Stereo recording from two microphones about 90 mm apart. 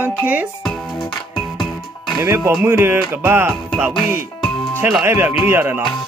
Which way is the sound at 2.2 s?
30° right (ahead or behind).